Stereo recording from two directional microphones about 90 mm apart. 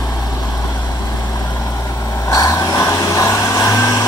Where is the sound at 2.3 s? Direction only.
35° left (ahead or behind).